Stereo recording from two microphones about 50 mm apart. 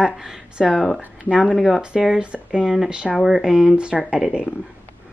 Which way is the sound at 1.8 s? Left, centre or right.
Centre.